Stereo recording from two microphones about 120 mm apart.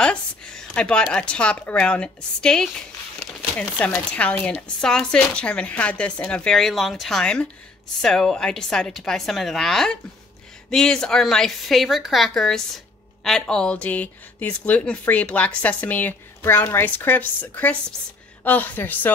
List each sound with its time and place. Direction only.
0.0 s speech: 5° left (ahead or behind)
3.7 s a woman's voice: 10° left (ahead or behind)